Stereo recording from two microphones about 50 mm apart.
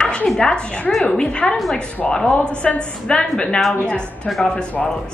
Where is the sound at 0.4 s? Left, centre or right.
Centre.